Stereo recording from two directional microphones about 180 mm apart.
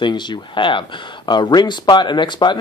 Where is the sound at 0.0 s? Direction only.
25° left (ahead or behind).